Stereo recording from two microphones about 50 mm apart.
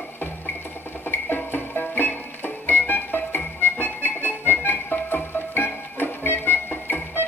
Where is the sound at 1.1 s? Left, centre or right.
Left.